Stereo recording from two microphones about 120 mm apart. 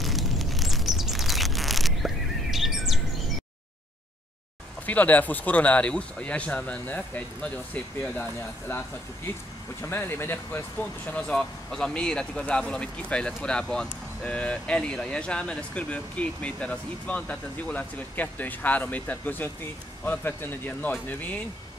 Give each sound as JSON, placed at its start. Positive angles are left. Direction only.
{"t": 0.0, "sound": "chirp", "side_deg": 0}
{"t": 4.8, "sound": "speech", "side_deg": 15}
{"t": 8.0, "sound": "speech", "side_deg": 15}